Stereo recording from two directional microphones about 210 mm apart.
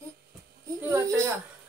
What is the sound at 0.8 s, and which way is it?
Speech, 15° right (ahead or behind).